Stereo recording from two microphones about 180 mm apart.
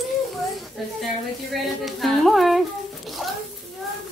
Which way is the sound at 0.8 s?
Centre (ahead or behind).